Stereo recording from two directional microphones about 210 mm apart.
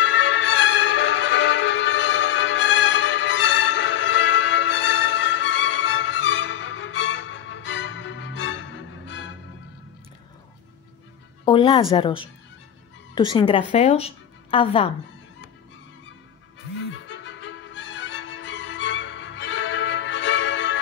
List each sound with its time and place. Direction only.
0.0 s music: 60° left (ahead or behind)
11.4 s a woman's voice: 25° left (ahead or behind)
16.9 s music: 60° left (ahead or behind)